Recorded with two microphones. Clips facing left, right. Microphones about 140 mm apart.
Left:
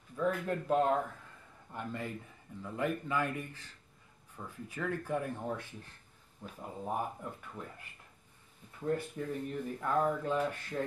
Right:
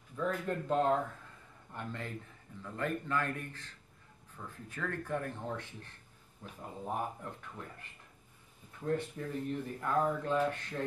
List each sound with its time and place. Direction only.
0.1 s speech: 10° left (ahead or behind)
8.8 s speech: 5° left (ahead or behind)